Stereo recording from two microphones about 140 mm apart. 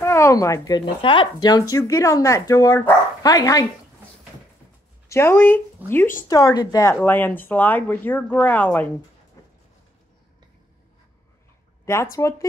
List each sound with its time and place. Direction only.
0.0 s speech: 20° left (ahead or behind)
5.0 s speech: 20° left (ahead or behind)
6.2 s speech: 25° left (ahead or behind); by 8.8 s 10° left (ahead or behind)
11.8 s speech: 20° left (ahead or behind)